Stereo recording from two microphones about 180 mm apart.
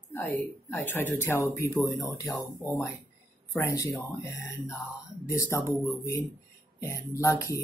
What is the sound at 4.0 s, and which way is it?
Speech, 20° left (ahead or behind).